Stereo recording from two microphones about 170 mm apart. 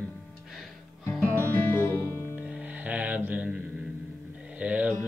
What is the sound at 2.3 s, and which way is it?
Music, 5° right (ahead or behind).